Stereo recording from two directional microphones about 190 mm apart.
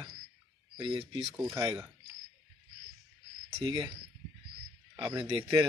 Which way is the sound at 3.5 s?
30° right (ahead or behind).